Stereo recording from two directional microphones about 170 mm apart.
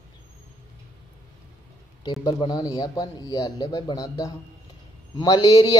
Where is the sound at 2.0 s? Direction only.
25° left (ahead or behind).